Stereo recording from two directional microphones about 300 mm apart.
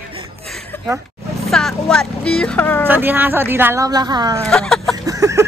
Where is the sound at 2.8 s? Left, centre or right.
Centre.